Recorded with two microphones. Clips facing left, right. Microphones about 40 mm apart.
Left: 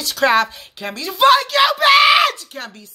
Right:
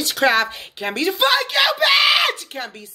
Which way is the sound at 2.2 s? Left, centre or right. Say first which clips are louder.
Left 2 dB; centre.